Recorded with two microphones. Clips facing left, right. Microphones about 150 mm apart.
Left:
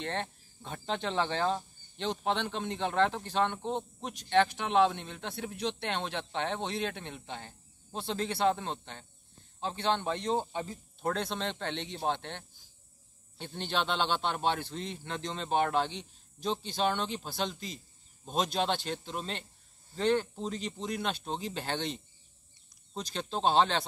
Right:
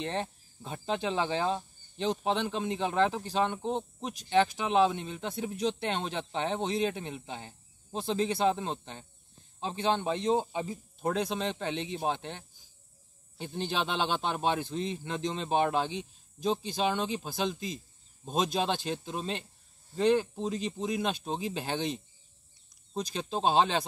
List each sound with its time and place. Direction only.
0.0 s speech: 10° right (ahead or behind)
19.0 s speech: 10° right (ahead or behind)